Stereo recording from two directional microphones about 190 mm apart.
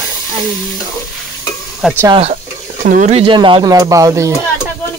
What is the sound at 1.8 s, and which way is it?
Speech, centre (ahead or behind).